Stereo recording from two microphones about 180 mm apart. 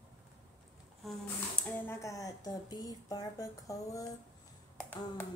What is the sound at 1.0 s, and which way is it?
Speech, 5° left (ahead or behind).